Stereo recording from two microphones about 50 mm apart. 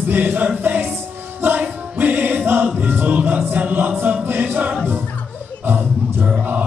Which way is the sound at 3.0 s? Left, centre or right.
Right.